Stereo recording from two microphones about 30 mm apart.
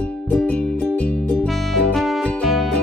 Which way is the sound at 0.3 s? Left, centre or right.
Left.